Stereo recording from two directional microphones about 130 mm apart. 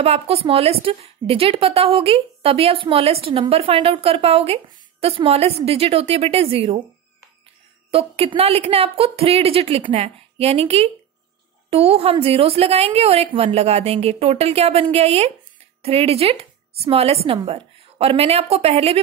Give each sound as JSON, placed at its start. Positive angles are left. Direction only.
{"t": 0.0, "sound": "a woman's voice", "side_deg": -50}
{"t": 7.9, "sound": "a woman's voice", "side_deg": -50}